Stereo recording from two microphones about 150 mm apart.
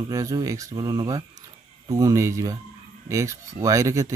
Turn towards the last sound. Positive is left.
turn(degrees=-20)  # may be behind; listen again after turning